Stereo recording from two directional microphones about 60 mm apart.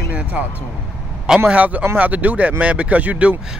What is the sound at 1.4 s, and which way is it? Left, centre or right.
Speech, right.